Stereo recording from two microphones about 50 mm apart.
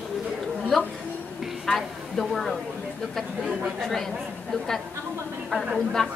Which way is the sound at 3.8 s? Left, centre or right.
Centre.